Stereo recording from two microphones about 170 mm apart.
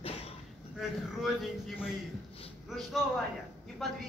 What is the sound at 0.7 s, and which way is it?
A man's voice, centre (ahead or behind).